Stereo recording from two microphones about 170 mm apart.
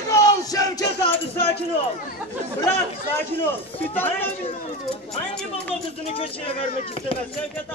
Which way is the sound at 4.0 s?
10° left (ahead or behind).